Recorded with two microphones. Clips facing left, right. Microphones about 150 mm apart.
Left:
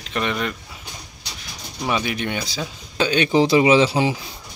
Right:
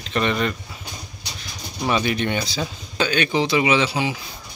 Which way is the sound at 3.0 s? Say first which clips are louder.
Left 3 dB; 25° left (ahead or behind).